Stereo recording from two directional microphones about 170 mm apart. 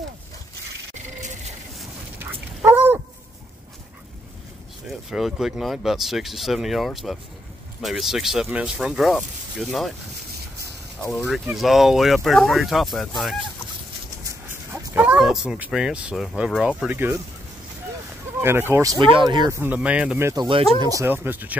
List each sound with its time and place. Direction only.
1.2 s a sound: 45° right (ahead or behind)
2.6 s a sound: 10° right (ahead or behind)
5.1 s speech: centre (ahead or behind)
11.1 s speech: centre (ahead or behind)
14.7 s speech: 10° right (ahead or behind)
18.4 s speech: 15° right (ahead or behind)
19.6 s speech: 10° right (ahead or behind)